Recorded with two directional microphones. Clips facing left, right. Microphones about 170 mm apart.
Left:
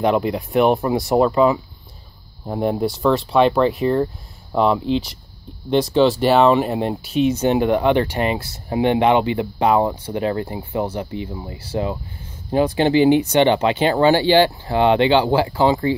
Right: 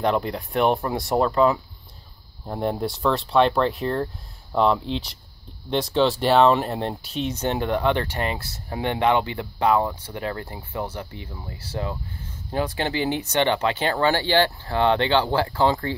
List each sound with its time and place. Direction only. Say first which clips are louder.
0.0 s speech: left 5 dB; 10° left (ahead or behind)